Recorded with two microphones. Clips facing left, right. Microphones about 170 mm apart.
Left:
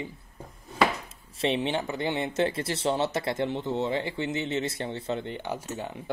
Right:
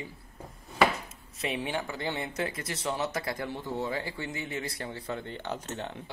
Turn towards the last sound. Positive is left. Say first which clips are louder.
# left 2 dB
turn(degrees=10)  # may be behind; listen again after turning